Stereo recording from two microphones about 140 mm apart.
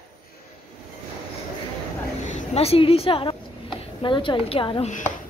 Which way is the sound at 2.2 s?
45° left (ahead or behind).